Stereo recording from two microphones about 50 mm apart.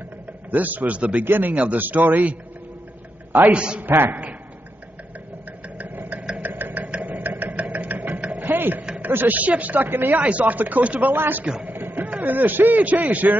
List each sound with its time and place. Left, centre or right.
0.5 s speech: right
1.2 s speech: right
3.5 s a woman's voice: right
3.8 s speech: right
5.8 s engine: right
8.5 s a sound: right
9.0 s speech: right